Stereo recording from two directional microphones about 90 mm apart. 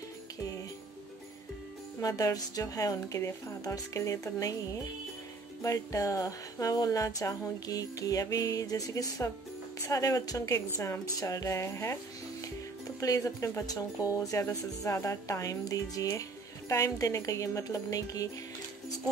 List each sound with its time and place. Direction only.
2.0 s speech: 40° left (ahead or behind)
5.6 s speech: 35° left (ahead or behind)
13.0 s speech: 40° left (ahead or behind)